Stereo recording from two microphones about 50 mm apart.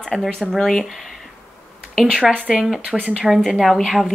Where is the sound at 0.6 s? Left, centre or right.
Centre.